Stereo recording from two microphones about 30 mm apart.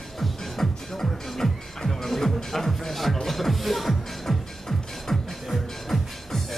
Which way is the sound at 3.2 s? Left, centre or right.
Centre.